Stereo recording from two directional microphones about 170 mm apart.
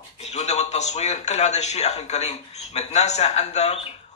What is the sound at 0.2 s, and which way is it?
A man's voice, 40° left (ahead or behind).